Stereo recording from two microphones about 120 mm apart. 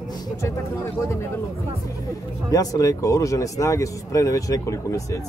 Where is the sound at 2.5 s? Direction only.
30° left (ahead or behind).